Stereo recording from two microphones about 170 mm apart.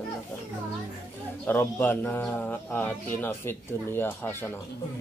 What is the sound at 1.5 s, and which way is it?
A man's voice, 10° left (ahead or behind).